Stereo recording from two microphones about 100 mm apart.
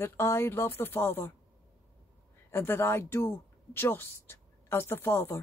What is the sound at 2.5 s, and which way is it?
Speech, 25° left (ahead or behind).